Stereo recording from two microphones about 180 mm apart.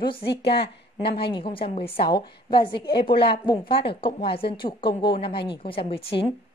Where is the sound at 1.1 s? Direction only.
30° left (ahead or behind).